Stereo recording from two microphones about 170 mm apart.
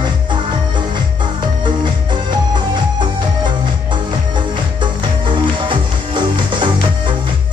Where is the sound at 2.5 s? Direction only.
25° right (ahead or behind).